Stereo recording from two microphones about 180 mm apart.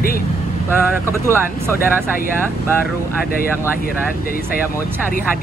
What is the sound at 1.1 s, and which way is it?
Speech, 15° right (ahead or behind).